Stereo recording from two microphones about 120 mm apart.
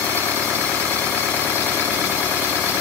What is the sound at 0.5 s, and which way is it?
Vehicle, 10° left (ahead or behind).